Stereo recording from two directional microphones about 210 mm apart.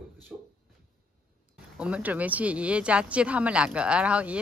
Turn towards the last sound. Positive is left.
turn(degrees=-5)  # may be behind; listen again after turning